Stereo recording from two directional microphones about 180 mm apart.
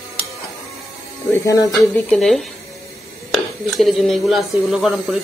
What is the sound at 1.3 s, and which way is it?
Speech, 20° left (ahead or behind).